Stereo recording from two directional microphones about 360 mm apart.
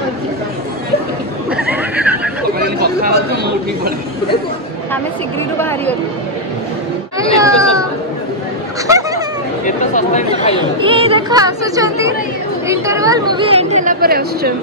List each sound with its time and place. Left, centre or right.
1.5 s neigh: centre
2.6 s chatter: right
5.6 s speech: centre
7.3 s baby cry: centre
8.8 s chatter: centre
9.7 s chatter: centre
10.6 s speech: centre